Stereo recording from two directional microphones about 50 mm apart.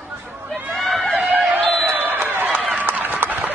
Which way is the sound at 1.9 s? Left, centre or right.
Right.